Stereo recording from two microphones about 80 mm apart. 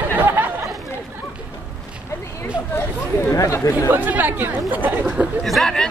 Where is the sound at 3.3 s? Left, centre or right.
Left.